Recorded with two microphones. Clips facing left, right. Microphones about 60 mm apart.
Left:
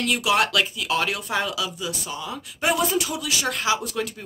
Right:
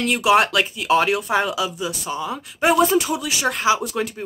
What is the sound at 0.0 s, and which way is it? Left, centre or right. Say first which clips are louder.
Speech: right 5 dB; right.